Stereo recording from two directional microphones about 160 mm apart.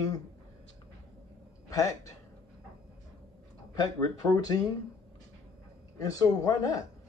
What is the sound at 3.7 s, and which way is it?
Speech, 20° left (ahead or behind).